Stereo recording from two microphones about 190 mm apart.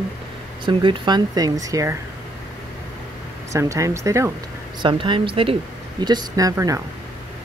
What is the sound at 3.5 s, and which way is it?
Speech, 15° right (ahead or behind).